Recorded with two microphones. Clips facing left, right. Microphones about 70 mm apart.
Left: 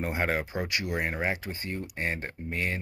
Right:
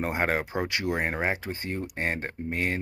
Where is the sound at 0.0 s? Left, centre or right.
Right.